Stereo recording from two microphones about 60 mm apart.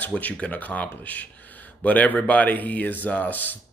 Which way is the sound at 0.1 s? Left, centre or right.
Left.